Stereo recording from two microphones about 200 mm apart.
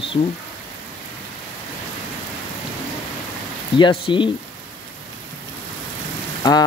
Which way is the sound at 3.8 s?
25° left (ahead or behind).